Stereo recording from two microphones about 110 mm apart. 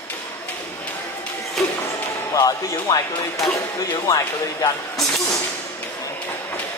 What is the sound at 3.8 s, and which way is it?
Speech, 35° left (ahead or behind).